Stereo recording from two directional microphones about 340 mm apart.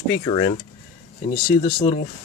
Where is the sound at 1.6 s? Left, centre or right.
Centre.